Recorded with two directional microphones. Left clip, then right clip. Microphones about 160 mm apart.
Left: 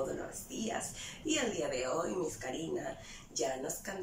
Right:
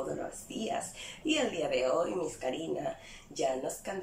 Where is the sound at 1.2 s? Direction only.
10° right (ahead or behind).